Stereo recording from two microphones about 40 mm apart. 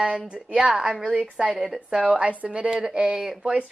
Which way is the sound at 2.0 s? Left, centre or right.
Right.